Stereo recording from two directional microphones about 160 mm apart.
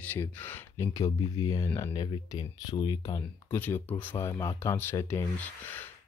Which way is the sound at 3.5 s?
10° left (ahead or behind).